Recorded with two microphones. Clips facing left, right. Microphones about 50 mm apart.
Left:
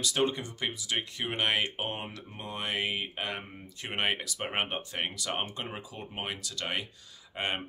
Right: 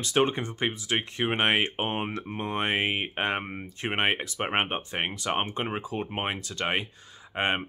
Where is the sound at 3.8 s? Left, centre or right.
Right.